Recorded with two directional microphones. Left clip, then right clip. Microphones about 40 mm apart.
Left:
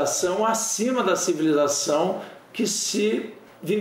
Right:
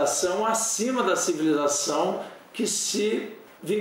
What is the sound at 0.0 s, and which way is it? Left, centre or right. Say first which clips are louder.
A man's voice: left 1 dB; left.